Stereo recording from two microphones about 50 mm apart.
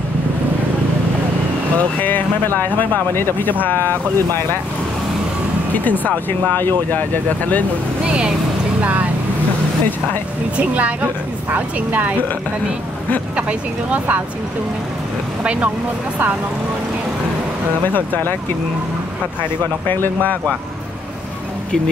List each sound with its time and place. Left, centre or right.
1.8 s speech: left
5.9 s speech: left
8.0 s speech: centre
10.6 s a woman's voice: right
13.4 s speech: right
17.8 s speech: left
19.9 s speech: left